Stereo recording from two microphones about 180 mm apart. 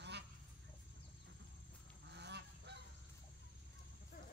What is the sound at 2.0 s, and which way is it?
Goose, 70° right (ahead or behind).